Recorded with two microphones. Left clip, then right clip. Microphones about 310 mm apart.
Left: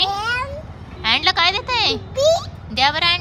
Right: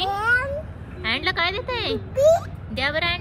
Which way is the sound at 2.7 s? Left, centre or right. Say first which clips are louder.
Left 7 dB; centre.